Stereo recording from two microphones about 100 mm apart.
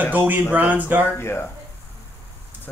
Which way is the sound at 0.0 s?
20° right (ahead or behind).